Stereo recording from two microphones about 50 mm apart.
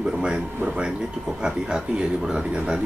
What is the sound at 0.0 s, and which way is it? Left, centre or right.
Speech, centre.